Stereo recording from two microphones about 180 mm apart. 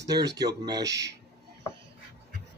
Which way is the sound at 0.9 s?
70° right (ahead or behind).